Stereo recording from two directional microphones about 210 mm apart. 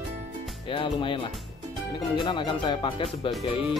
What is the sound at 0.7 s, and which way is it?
Speech, 25° left (ahead or behind).